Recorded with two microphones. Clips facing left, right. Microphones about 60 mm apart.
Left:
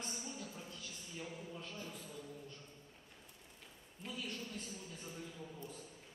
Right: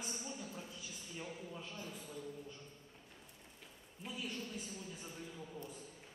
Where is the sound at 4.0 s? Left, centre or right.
Centre.